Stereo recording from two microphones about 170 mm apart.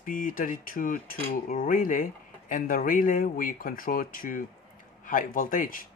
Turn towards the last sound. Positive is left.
turn(degrees=55)  # may be behind; listen again after turning